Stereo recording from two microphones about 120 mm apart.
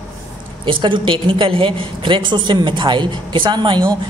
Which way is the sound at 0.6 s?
45° right (ahead or behind).